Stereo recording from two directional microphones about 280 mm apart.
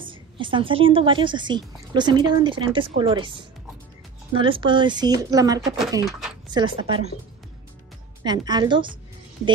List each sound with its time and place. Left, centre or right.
0.0 s a woman's voice: centre
6.0 s speech: centre
6.5 s a woman's voice: centre
8.2 s a woman's voice: centre